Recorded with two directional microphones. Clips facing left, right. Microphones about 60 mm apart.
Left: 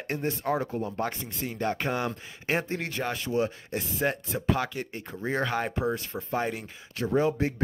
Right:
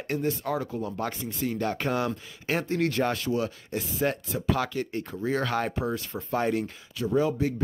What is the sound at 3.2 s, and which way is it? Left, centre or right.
Speech, left.